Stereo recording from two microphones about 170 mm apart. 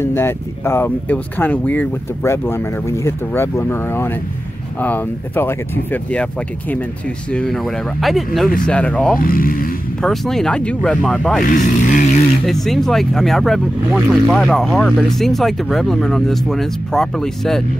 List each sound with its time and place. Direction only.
0.0 s speech: 15° left (ahead or behind)
7.2 s speech: 5° left (ahead or behind)
9.2 s speech: 55° left (ahead or behind)
10.0 s speech: 5° left (ahead or behind)
11.4 s speech: 55° left (ahead or behind)
12.4 s speech: centre (ahead or behind)